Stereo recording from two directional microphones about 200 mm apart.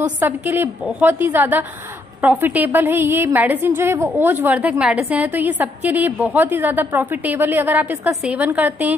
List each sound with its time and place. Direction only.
0.2 s a woman's voice: 10° right (ahead or behind)